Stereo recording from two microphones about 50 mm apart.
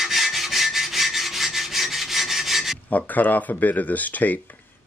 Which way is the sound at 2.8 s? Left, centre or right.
Left.